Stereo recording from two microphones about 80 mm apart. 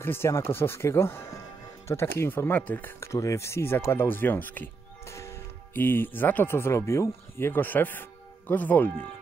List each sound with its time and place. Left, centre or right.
0.0 s speech: left
3.0 s speech: left
5.0 s music: left
5.8 s speech: left